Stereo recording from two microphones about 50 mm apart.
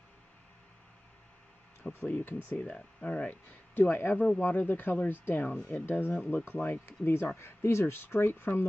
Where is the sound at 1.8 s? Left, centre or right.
Left.